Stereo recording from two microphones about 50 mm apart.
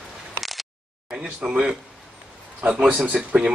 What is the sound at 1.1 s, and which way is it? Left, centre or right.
Speech, centre.